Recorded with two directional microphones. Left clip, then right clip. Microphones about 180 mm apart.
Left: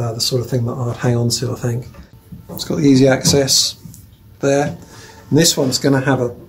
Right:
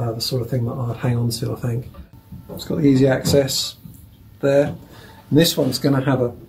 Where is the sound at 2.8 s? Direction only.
40° left (ahead or behind).